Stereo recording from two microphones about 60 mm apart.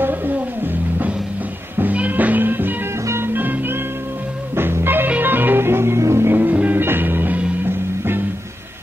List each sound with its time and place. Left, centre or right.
0.0 s music: right
1.8 s music: right